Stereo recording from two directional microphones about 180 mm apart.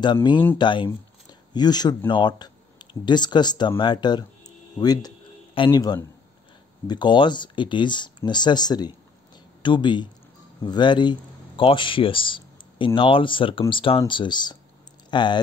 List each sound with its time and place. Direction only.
0.0 s speech: 25° left (ahead or behind)